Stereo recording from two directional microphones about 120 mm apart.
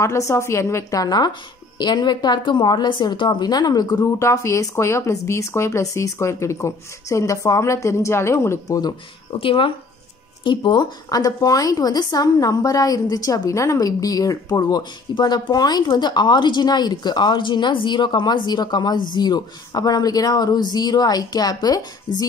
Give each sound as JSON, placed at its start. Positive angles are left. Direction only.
{"t": 0.0, "sound": "a woman's voice", "side_deg": 25}
{"t": 9.4, "sound": "speech", "side_deg": 50}